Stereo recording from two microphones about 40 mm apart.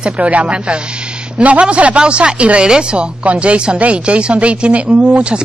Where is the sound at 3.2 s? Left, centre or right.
Right.